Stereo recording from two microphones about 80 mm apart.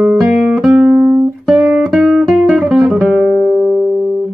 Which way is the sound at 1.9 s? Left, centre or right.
Centre.